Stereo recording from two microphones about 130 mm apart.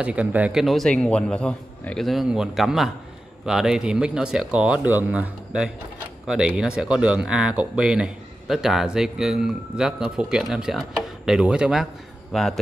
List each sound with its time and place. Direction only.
0.0 s speech: 10° right (ahead or behind)